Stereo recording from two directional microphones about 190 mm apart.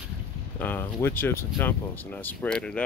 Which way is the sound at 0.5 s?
10° left (ahead or behind).